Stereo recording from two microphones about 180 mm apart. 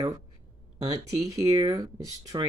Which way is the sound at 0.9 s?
20° right (ahead or behind).